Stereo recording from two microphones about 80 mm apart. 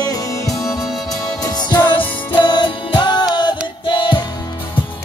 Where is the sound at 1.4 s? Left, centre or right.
Left.